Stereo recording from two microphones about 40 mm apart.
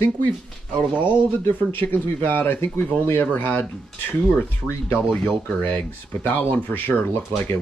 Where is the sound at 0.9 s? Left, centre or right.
Right.